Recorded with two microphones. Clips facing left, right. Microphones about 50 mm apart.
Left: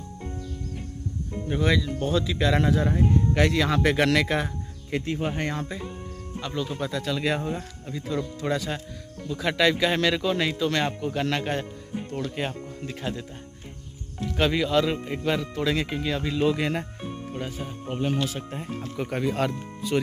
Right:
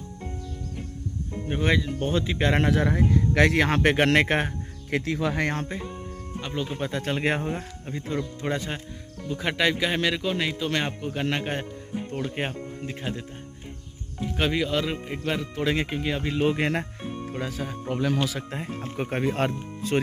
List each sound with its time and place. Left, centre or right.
1.5 s speech: right
2.6 s speech: right
4.9 s speech: right
5.7 s speech: right
6.4 s a man's voice: right
14.2 s a man's voice: centre
15.6 s speech: right
16.3 s speech: right
17.3 s speech: right
18.9 s speech: right
19.9 s speech: right